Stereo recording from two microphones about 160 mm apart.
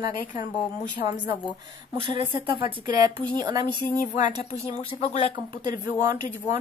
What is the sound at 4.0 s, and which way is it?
Speech, 50° left (ahead or behind).